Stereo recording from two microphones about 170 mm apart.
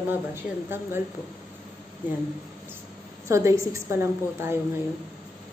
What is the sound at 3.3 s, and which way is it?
A woman's voice, 20° right (ahead or behind).